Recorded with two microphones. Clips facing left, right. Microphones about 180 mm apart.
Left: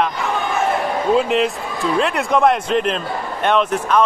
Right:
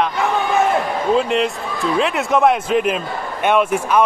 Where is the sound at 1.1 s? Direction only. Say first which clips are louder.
Even; centre (ahead or behind).